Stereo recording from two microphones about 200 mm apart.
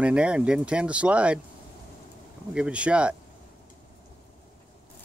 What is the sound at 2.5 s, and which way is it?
Speech, 5° right (ahead or behind).